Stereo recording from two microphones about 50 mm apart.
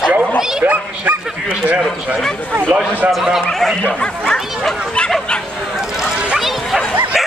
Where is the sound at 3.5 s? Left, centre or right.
Centre.